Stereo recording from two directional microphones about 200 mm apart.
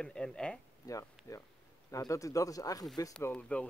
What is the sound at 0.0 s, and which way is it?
Speech, 5° left (ahead or behind).